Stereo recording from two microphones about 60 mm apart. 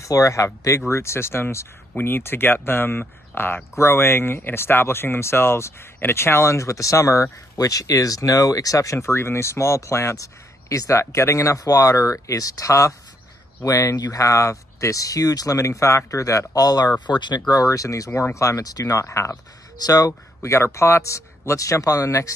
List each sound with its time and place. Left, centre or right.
0.0 s speech: left
7.5 s speech: left
17.6 s speech: left
19.8 s speech: left